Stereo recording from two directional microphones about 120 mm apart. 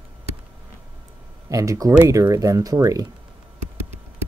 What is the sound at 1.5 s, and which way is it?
Speech, 25° right (ahead or behind).